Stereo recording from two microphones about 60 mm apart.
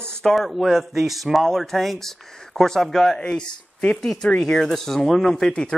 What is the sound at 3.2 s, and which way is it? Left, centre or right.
Speech, centre.